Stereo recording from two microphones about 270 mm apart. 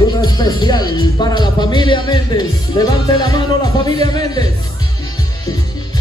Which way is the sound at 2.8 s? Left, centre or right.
Centre.